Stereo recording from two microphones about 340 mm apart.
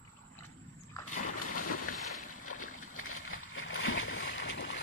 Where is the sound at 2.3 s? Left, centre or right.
Left.